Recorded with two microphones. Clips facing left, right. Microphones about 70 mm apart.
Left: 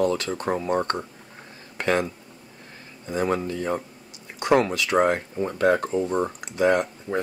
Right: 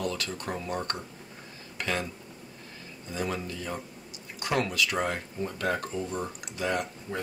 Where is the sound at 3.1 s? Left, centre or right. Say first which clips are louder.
Left 8 dB; left.